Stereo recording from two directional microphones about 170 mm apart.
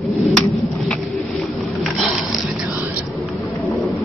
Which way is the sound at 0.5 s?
Centre (ahead or behind).